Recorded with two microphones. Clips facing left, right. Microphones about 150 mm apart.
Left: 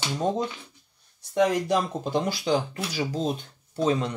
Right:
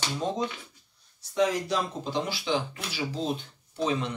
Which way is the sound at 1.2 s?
55° left (ahead or behind).